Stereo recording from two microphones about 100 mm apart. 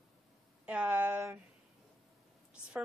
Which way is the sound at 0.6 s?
10° right (ahead or behind).